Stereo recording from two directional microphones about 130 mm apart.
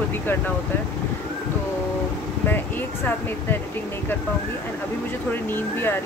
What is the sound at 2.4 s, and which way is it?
Speech, 15° left (ahead or behind).